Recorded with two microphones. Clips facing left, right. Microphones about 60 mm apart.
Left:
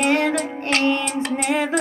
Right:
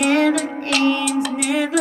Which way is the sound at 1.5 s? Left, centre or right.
Left.